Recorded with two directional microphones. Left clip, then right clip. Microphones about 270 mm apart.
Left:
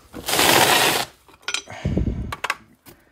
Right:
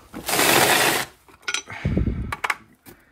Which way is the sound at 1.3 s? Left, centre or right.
Centre.